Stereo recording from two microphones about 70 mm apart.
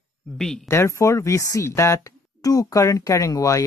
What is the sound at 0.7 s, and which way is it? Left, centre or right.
Speech, left.